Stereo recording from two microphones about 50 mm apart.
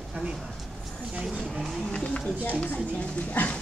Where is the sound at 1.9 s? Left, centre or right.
Left.